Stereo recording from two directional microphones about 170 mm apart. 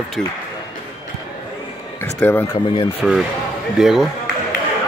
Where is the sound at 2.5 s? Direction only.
30° left (ahead or behind).